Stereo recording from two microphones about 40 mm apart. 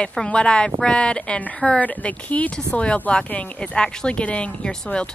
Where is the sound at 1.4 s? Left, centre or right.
Left.